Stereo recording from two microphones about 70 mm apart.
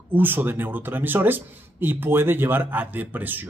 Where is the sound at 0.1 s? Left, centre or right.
Right.